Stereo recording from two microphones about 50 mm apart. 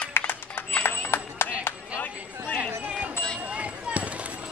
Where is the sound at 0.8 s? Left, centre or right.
Left.